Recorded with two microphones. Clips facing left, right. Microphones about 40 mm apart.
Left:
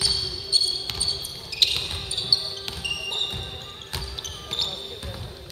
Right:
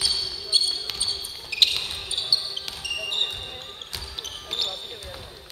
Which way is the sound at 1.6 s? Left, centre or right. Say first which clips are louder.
Right 1 dB; centre.